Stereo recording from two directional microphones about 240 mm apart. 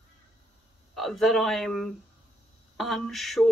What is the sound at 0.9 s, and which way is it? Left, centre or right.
Speech, centre.